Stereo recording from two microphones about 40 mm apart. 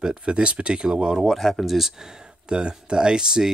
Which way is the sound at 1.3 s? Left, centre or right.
Centre.